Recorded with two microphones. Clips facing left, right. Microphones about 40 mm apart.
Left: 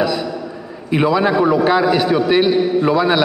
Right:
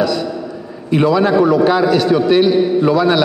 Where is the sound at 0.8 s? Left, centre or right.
Centre.